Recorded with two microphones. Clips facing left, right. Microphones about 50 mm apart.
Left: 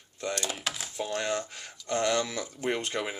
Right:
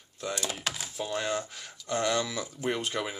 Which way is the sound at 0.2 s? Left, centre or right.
Centre.